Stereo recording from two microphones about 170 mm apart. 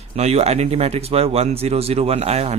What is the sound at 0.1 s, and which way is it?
Speech, 40° right (ahead or behind).